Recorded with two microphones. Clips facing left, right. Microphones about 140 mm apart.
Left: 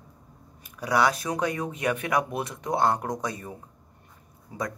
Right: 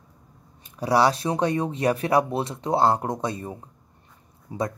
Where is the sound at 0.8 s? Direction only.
30° right (ahead or behind).